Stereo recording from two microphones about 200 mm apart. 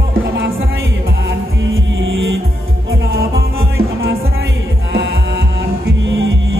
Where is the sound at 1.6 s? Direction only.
70° right (ahead or behind).